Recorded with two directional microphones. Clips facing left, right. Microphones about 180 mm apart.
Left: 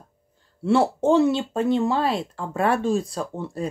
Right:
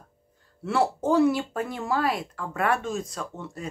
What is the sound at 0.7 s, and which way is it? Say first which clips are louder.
Speech: left 5 dB; 25° left (ahead or behind).